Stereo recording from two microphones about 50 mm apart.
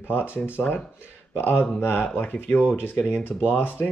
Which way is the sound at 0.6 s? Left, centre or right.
Left.